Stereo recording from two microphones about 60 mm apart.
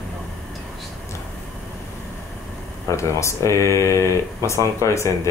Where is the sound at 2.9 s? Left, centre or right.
Left.